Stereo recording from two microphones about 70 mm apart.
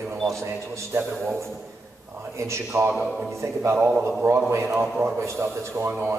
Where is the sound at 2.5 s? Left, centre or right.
Right.